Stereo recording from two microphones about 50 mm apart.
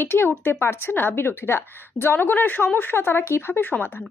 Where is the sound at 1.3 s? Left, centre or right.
Left.